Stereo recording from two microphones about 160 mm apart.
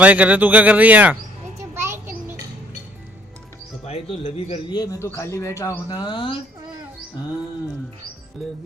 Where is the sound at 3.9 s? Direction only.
40° left (ahead or behind).